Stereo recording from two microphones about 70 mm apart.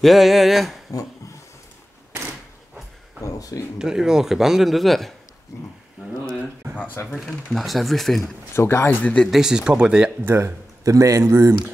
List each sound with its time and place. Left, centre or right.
0.0 s a man's voice: centre
3.2 s a sound: left
3.7 s a man's voice: centre
5.5 s speech: left
6.3 s a sound: right
6.8 s speech: left
7.2 s a man's voice: centre
8.5 s speech: left
9.0 s speech: centre
9.3 s speech: centre
10.2 s a man's voice: right
11.2 s speech: right